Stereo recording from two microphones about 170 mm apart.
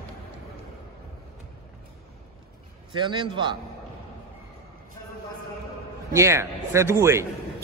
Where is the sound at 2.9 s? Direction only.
25° right (ahead or behind).